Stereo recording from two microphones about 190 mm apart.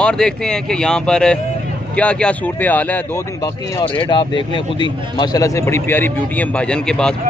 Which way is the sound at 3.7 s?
25° left (ahead or behind).